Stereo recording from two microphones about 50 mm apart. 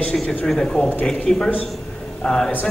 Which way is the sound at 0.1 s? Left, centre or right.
Centre.